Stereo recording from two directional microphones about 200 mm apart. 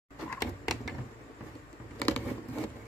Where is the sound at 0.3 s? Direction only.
Centre (ahead or behind).